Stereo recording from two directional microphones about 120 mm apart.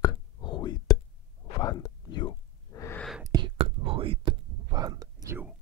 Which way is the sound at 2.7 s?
25° left (ahead or behind).